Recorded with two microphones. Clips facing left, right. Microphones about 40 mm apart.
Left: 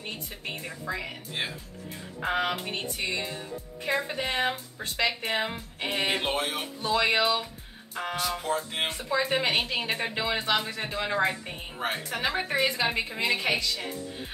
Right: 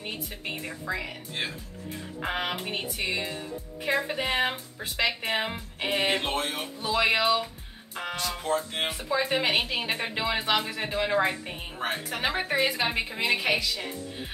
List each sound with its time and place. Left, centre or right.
0.0 s a woman's voice: centre
1.0 s music: centre
2.2 s a woman's voice: centre
6.1 s speech: centre
6.9 s a woman's voice: centre
8.2 s music: centre
9.1 s a woman's voice: centre
11.8 s music: centre
12.2 s a woman's voice: centre